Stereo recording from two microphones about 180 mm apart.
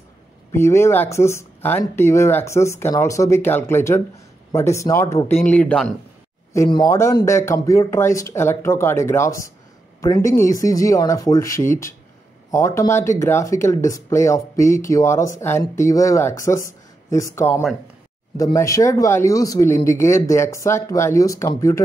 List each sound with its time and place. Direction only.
0.5 s speech: 15° left (ahead or behind)
6.5 s speech: 20° left (ahead or behind)